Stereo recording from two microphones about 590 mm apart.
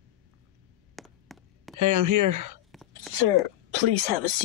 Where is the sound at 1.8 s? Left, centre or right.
Right.